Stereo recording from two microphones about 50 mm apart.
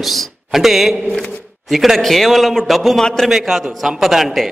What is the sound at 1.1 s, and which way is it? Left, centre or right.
Speech, centre.